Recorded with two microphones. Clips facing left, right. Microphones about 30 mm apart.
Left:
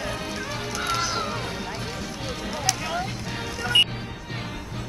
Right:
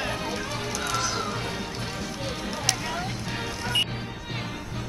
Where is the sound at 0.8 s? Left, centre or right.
Centre.